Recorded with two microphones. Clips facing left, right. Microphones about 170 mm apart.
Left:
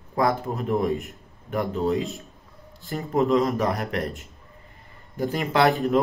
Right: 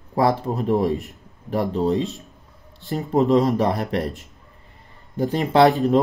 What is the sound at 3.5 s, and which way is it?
Speech, 30° right (ahead or behind).